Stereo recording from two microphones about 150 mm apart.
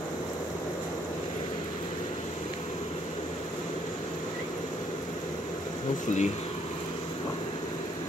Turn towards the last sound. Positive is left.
turn(degrees=50)  # may be behind; listen again after turning